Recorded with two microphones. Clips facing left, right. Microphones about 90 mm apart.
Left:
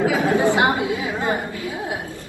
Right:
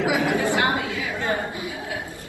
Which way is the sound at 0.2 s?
25° left (ahead or behind).